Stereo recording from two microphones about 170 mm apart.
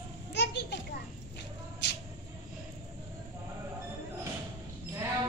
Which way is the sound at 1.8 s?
90° left.